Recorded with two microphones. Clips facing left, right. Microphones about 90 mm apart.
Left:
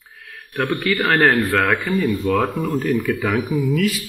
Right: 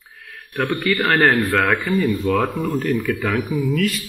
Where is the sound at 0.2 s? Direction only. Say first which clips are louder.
Even; centre (ahead or behind).